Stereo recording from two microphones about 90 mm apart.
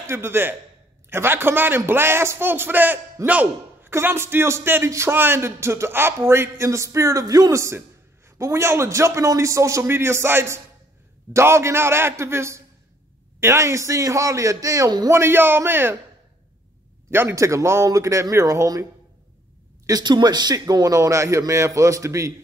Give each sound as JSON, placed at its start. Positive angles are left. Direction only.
{"t": 0.0, "sound": "speech", "side_deg": -30}
{"t": 3.9, "sound": "a man's voice", "side_deg": -30}
{"t": 15.0, "sound": "speech", "side_deg": -30}
{"t": 17.1, "sound": "a man's voice", "side_deg": -25}
{"t": 19.9, "sound": "a man's voice", "side_deg": -50}